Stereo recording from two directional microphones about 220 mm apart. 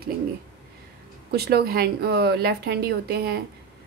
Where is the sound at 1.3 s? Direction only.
45° right (ahead or behind).